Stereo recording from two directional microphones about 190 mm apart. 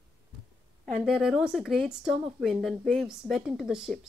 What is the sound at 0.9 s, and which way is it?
Speech, centre (ahead or behind).